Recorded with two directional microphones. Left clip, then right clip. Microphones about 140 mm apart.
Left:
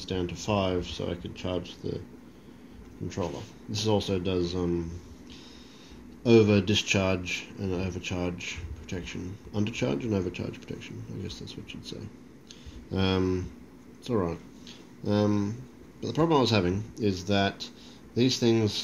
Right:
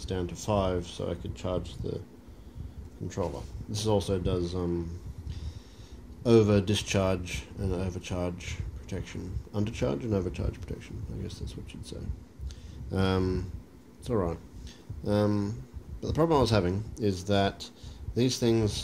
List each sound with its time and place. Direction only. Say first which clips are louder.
0.0 s speech: left 2 dB; 15° right (ahead or behind)
3.1 s speech: even; 15° right (ahead or behind)
6.2 s speech: left 2 dB; 15° right (ahead or behind)